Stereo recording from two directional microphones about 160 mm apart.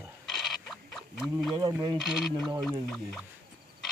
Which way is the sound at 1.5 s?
25° right (ahead or behind).